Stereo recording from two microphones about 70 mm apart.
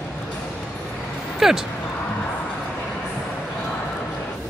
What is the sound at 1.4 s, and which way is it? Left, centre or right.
Speech, centre.